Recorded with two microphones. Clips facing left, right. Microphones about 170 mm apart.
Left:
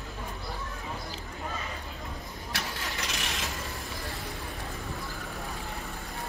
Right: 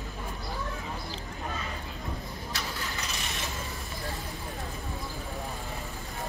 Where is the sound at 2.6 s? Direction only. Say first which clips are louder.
Left 2 dB; 65° left (ahead or behind).